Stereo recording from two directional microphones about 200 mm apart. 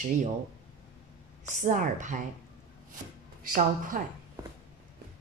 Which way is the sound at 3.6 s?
45° right (ahead or behind).